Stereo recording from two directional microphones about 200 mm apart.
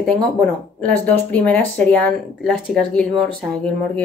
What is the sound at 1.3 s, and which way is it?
A woman's voice, 5° left (ahead or behind).